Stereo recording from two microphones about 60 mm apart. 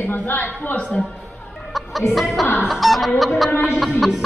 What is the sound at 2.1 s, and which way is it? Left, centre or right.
Music, centre.